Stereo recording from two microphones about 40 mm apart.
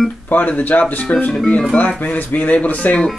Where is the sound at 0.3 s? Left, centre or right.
Left.